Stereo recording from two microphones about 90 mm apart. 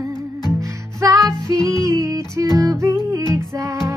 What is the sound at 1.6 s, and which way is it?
Music, 35° right (ahead or behind).